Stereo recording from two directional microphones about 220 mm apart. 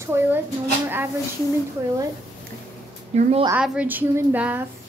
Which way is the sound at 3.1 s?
30° right (ahead or behind).